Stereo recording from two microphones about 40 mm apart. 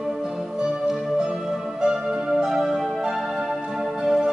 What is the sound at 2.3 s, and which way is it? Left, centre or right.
Music, centre.